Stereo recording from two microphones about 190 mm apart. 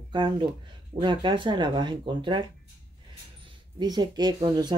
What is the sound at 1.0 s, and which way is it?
Speech, 25° right (ahead or behind).